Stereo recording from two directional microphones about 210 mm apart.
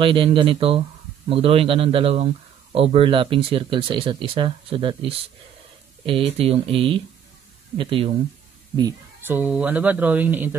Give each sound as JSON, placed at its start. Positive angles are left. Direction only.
{"t": 0.0, "sound": "speech", "side_deg": -25}
{"t": 8.7, "sound": "speech", "side_deg": -15}